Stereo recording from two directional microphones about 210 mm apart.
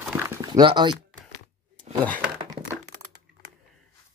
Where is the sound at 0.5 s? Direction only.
20° right (ahead or behind).